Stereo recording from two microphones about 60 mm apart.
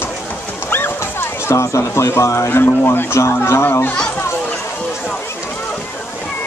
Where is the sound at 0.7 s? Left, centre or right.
Left.